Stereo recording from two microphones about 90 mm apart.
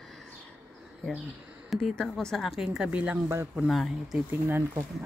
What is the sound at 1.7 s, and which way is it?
Speech, 5° left (ahead or behind).